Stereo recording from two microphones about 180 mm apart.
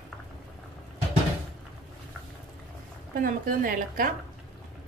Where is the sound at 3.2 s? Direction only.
50° right (ahead or behind).